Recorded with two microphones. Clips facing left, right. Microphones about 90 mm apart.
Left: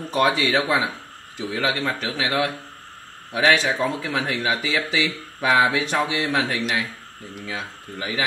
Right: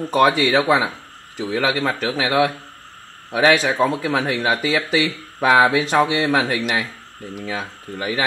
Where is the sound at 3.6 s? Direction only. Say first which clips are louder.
Right 4 dB; 50° right (ahead or behind).